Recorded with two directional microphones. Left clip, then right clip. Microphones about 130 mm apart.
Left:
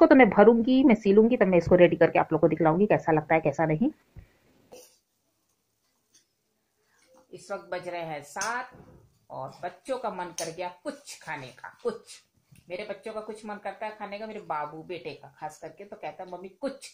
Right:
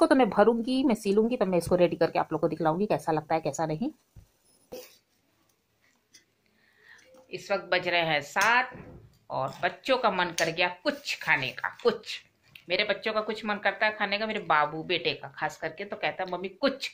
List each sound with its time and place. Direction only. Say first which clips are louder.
0.2 s speech: left 4 dB; 15° right (ahead or behind)
7.4 s speech: right 7 dB; 5° left (ahead or behind)
9.3 s speech: right 7 dB; 5° left (ahead or behind)